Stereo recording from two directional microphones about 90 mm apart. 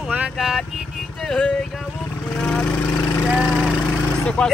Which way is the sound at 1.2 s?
5° left (ahead or behind).